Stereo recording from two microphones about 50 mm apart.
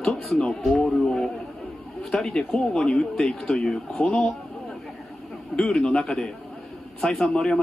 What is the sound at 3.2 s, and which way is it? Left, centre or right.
Speech, centre.